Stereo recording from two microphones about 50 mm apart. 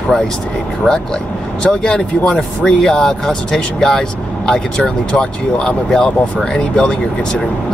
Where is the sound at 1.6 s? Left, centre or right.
Centre.